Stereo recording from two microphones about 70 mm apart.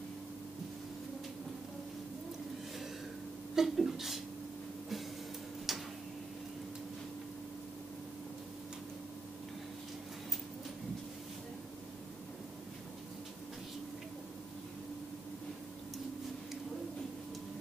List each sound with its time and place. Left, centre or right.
3.5 s speech: centre
5.7 s tick-tock: centre